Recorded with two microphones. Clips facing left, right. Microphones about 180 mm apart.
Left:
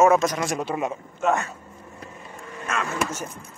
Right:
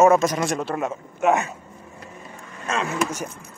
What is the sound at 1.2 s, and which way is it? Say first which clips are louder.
Speech: right 3 dB; 15° right (ahead or behind).